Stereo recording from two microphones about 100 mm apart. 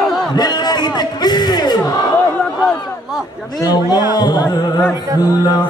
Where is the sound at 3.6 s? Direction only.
40° left (ahead or behind).